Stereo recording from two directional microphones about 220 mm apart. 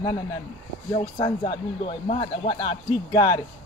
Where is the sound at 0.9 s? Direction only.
20° left (ahead or behind).